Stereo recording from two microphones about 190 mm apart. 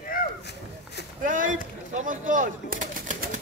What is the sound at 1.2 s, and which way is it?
Speech, 45° right (ahead or behind).